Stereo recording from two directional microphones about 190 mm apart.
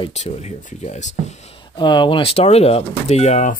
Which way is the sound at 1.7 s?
25° left (ahead or behind).